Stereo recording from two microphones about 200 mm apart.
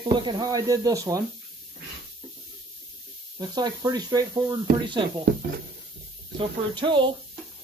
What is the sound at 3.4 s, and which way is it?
Speech, 20° right (ahead or behind).